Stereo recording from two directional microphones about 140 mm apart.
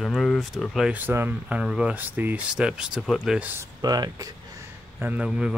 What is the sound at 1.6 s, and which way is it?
Speech, 5° right (ahead or behind).